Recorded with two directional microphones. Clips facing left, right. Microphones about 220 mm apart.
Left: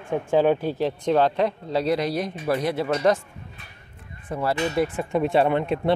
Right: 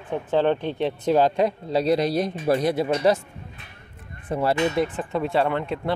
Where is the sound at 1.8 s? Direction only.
30° right (ahead or behind); by 3.2 s 10° right (ahead or behind).